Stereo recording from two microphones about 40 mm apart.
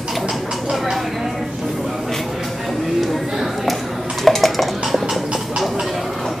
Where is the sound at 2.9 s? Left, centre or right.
Centre.